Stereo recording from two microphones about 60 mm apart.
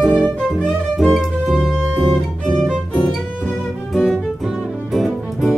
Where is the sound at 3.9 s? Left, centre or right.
Centre.